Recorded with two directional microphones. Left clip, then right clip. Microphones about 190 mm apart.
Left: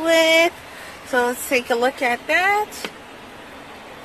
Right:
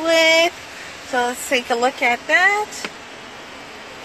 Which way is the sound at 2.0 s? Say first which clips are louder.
Right 3 dB; 10° left (ahead or behind).